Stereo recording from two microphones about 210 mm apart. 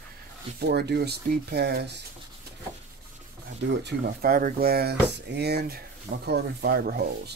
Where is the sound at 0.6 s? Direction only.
50° right (ahead or behind).